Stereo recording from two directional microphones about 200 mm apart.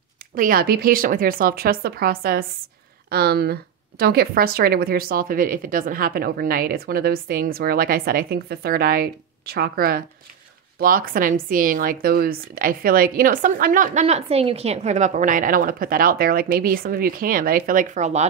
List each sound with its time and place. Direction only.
0.4 s speech: 45° right (ahead or behind)